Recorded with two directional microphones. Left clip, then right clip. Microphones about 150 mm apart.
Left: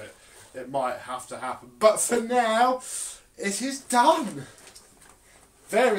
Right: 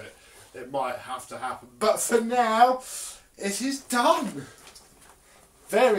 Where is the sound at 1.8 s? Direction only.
20° left (ahead or behind).